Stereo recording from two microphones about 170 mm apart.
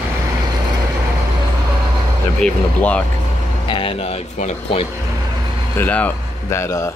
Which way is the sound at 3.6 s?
30° left (ahead or behind).